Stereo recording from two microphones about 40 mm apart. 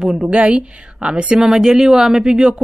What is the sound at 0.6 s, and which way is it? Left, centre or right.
Speech, right.